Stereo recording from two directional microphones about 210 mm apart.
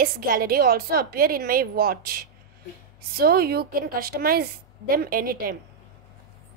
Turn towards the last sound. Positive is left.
turn(degrees=-45)  # may be behind; listen again after turning